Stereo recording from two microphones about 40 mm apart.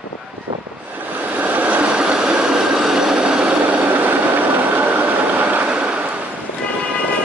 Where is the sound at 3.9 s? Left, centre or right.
Right.